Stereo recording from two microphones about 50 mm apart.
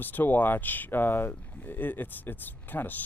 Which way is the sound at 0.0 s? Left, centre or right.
Left.